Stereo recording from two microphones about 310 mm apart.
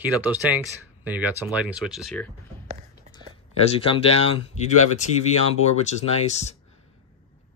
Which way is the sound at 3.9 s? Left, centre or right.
Centre.